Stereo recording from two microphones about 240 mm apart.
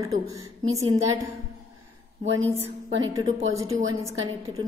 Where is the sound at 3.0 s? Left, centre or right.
Centre.